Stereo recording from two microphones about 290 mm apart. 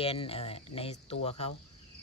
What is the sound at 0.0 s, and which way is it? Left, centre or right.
Speech, centre.